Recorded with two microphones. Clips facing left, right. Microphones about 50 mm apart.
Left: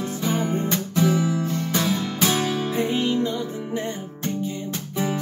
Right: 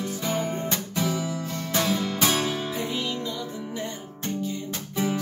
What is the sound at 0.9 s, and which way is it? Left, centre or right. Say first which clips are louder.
Guitar: left 7 dB; centre.